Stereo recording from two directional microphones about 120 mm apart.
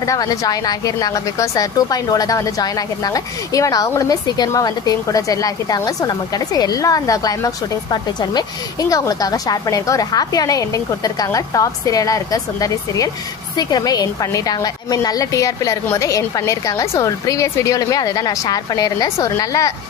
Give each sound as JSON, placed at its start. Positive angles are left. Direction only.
{"t": 0.0, "sound": "a woman's voice", "side_deg": 30}